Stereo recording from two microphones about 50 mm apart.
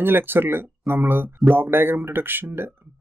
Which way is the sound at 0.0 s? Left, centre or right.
Right.